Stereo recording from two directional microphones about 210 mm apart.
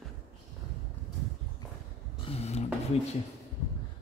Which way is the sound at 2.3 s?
30° left (ahead or behind).